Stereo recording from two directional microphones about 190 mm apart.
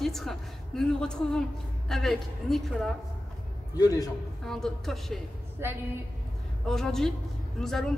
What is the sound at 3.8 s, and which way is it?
Speech, 20° left (ahead or behind).